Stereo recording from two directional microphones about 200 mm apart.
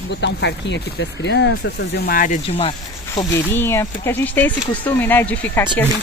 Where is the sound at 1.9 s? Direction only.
50° left (ahead or behind).